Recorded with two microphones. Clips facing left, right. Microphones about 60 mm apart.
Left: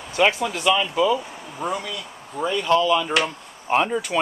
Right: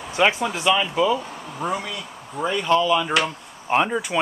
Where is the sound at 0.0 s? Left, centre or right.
Centre.